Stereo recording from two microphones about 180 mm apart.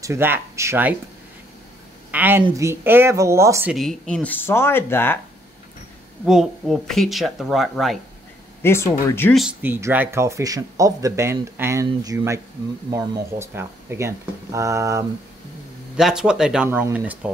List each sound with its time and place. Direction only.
0.0 s speech: 15° right (ahead or behind)
2.0 s speech: 10° right (ahead or behind)
3.7 s speech: centre (ahead or behind)
6.2 s speech: centre (ahead or behind)
8.6 s speech: 15° left (ahead or behind)
9.3 s speech: 5° right (ahead or behind)
16.0 s speech: 5° right (ahead or behind)